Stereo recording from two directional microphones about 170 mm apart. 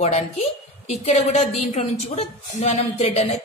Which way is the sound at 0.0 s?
40° left (ahead or behind).